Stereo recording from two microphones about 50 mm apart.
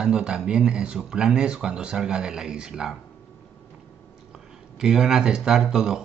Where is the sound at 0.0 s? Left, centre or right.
Centre.